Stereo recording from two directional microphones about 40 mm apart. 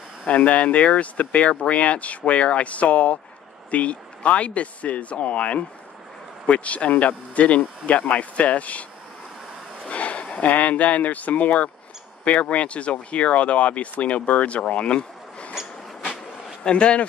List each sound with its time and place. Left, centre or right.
0.3 s speech: left
9.8 s a sound: left
10.5 s speech: left
16.6 s speech: left